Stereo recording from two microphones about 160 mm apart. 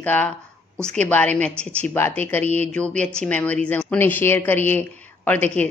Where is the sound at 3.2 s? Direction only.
10° left (ahead or behind).